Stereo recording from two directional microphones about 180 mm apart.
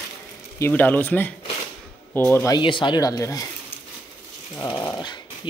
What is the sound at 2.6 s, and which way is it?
Speech, 25° left (ahead or behind).